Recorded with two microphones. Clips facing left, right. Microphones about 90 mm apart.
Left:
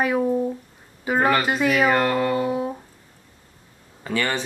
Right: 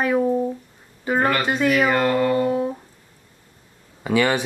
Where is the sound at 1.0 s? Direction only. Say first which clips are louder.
Even; 5° left (ahead or behind).